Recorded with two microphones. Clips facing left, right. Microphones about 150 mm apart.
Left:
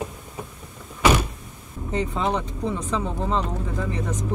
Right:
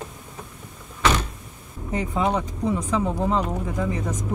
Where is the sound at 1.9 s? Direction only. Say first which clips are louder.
Right 1 dB; 10° right (ahead or behind).